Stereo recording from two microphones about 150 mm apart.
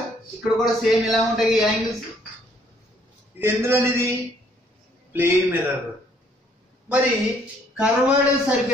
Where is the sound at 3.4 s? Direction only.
15° right (ahead or behind).